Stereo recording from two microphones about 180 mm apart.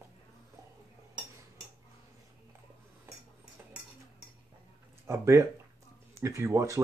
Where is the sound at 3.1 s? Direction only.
15° right (ahead or behind).